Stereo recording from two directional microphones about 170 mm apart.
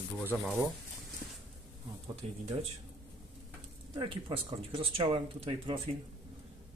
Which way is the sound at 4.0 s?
30° right (ahead or behind).